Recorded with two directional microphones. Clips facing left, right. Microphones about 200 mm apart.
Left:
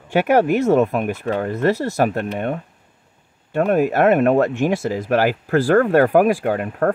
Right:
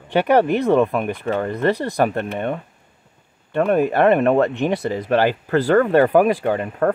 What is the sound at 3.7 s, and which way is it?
Speech, 5° left (ahead or behind).